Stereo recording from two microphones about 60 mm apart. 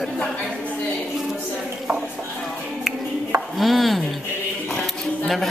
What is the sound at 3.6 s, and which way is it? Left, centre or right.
Speech, centre.